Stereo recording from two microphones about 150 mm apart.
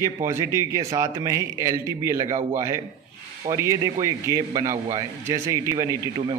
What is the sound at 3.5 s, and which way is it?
Speech, 20° right (ahead or behind).